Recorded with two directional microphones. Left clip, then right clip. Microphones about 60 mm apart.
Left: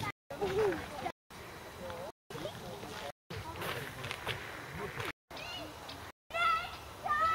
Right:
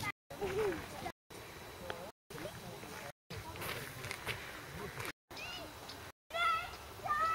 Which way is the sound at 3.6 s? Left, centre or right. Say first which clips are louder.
Left 4 dB; centre.